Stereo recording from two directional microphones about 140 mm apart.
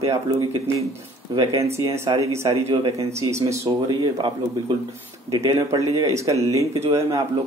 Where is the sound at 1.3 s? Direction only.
25° right (ahead or behind).